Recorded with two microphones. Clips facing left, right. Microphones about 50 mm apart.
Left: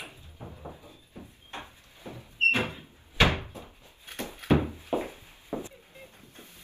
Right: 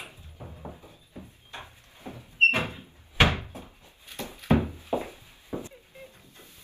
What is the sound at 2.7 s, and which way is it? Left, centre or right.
Door, right.